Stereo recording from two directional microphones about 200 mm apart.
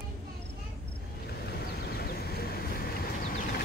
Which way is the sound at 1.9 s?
50° left (ahead or behind).